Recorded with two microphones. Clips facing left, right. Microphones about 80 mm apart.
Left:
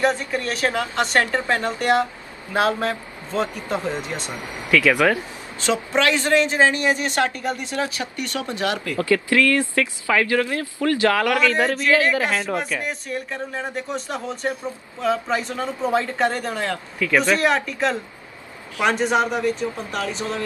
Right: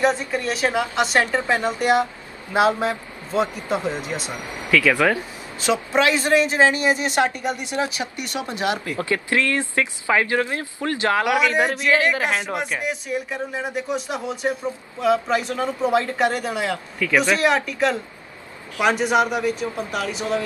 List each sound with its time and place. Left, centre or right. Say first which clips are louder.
0.1 s speech: right 1 dB; centre
4.6 s speech: left 1 dB; centre
5.7 s a woman's voice: right 1 dB; centre
11.9 s speech: left 1 dB; right
12.8 s speech: right 2 dB; centre